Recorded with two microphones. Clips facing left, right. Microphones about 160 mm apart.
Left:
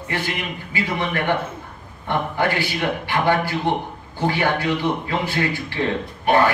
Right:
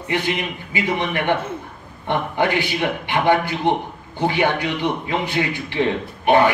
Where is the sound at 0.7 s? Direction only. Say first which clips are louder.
Right 2 dB; 20° right (ahead or behind).